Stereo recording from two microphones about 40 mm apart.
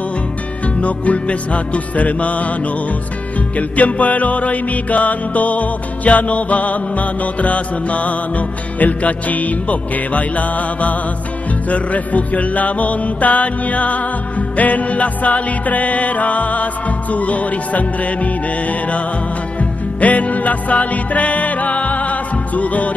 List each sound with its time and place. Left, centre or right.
0.7 s music: left
3.5 s music: left